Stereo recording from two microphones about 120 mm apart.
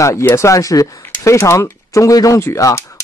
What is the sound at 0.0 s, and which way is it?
Speech, 25° left (ahead or behind).